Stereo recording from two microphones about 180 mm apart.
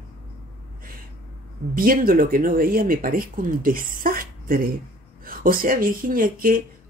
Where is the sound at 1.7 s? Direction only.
50° right (ahead or behind).